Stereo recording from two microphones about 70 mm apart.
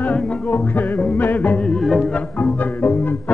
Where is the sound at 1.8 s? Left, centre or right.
Centre.